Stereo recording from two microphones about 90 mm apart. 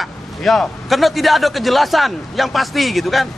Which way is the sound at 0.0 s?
5° left (ahead or behind).